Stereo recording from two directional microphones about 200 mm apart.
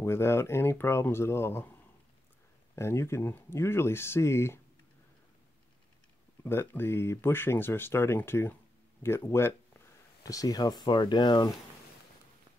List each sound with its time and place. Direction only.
0.0 s speech: 10° left (ahead or behind)
2.7 s speech: 15° left (ahead or behind)
6.4 s speech: 10° left (ahead or behind)